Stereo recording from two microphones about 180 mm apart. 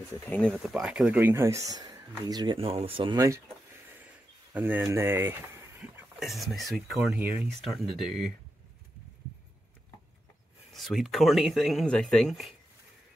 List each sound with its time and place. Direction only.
0.2 s speech: 5° left (ahead or behind); by 3.3 s 20° right (ahead or behind)
4.6 s speech: 10° right (ahead or behind)
10.7 s speech: centre (ahead or behind)